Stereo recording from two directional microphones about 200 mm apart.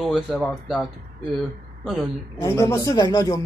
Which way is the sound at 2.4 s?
15° left (ahead or behind).